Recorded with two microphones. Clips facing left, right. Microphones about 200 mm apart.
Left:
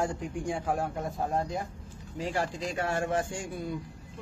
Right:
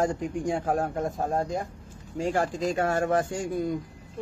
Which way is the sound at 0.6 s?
40° right (ahead or behind).